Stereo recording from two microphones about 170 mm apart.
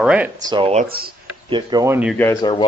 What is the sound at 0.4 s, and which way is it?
Speech, 25° right (ahead or behind).